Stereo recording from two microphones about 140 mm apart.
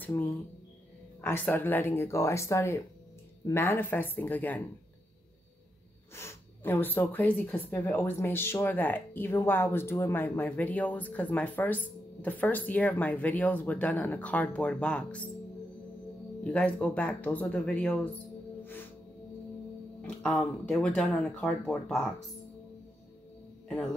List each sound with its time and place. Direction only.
1.2 s speech: 15° left (ahead or behind)
6.1 s speech: 15° left (ahead or behind)
16.4 s speech: 10° left (ahead or behind)
18.6 s music: 15° left (ahead or behind)
20.0 s speech: 5° left (ahead or behind)